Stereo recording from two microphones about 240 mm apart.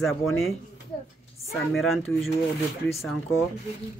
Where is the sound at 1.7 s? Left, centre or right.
Centre.